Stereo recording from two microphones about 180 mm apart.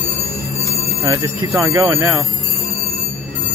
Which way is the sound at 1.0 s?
15° right (ahead or behind).